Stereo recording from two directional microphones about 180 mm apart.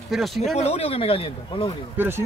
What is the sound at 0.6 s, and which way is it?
Speech, 35° left (ahead or behind).